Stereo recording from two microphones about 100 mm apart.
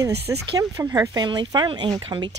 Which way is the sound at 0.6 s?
35° right (ahead or behind).